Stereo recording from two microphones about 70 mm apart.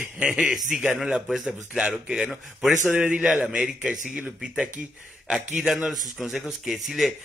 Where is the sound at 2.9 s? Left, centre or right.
Centre.